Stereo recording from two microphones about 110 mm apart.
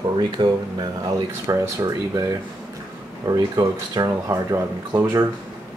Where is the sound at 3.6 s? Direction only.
35° right (ahead or behind).